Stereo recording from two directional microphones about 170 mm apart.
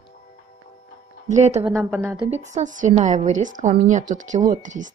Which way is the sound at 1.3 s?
40° right (ahead or behind).